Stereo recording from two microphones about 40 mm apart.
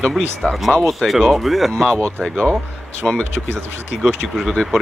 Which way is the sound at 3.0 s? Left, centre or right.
Left.